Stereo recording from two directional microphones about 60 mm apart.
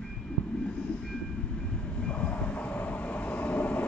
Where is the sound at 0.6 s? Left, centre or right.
Left.